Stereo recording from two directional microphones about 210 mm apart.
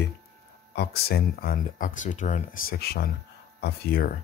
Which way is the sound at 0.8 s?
50° left (ahead or behind).